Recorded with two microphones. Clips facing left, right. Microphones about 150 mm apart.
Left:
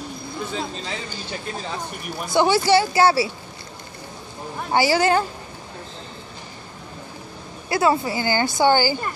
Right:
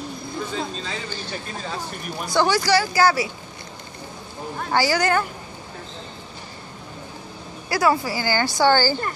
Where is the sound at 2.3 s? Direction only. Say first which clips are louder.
Left 2 dB; 25° left (ahead or behind).